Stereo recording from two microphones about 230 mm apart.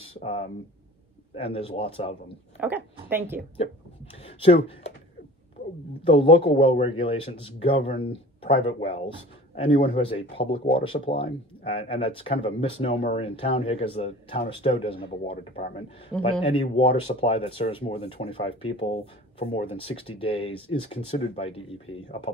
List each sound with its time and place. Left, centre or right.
0.0 s a sound: left
1.3 s speech: left
2.6 s speech: centre
4.4 s speech: left
6.0 s speech: left